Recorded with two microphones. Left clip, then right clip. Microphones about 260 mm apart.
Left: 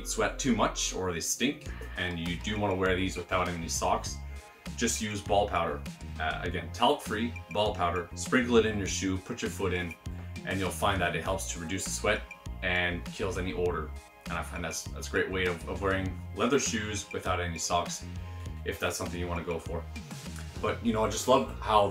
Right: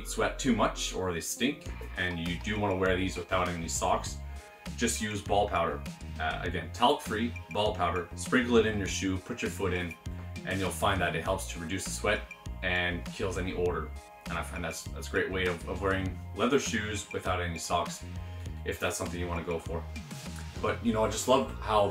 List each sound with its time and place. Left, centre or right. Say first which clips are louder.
0.1 s speech: even; centre